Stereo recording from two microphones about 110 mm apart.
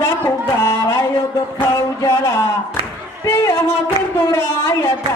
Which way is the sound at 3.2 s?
25° left (ahead or behind).